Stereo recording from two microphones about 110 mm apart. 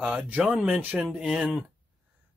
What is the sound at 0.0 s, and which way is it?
Speech, 15° right (ahead or behind).